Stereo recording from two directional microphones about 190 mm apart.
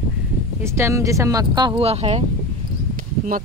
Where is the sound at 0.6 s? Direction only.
15° right (ahead or behind); by 2.2 s 30° right (ahead or behind).